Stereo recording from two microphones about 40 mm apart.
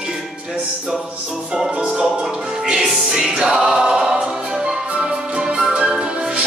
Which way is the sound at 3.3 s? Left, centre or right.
Centre.